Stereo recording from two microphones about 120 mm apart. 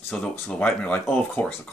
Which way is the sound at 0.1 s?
10° left (ahead or behind).